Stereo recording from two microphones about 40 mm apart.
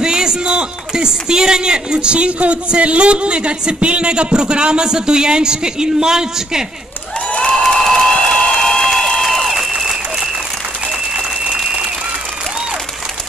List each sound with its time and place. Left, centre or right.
0.0 s speech: centre
7.2 s a sound: left
7.6 s applause: centre
9.7 s applause: centre